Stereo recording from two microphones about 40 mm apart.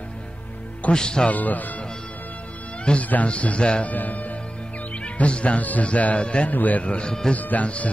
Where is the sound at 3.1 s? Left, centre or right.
Left.